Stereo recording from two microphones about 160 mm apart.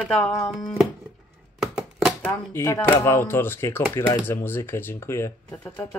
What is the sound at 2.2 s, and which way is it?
Speech, 15° left (ahead or behind).